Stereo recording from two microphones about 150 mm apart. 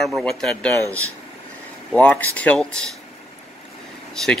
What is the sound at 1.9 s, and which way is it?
Speech, 10° left (ahead or behind).